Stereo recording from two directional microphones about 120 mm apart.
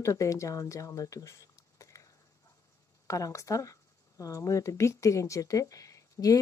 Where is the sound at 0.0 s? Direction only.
25° left (ahead or behind).